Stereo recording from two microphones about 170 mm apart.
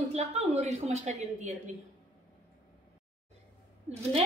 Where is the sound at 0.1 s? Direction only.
40° right (ahead or behind).